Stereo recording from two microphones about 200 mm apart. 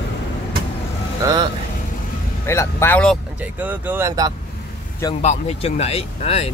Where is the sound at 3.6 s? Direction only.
10° right (ahead or behind).